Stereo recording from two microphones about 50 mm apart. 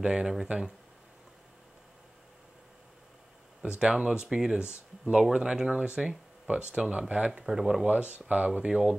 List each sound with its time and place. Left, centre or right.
0.0 s speech: centre
3.6 s speech: centre
7.8 s speech: right